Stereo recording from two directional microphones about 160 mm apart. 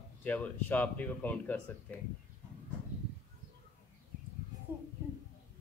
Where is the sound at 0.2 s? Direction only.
10° left (ahead or behind).